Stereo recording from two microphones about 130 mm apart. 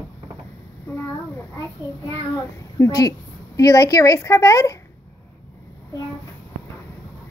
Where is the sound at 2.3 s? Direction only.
25° left (ahead or behind).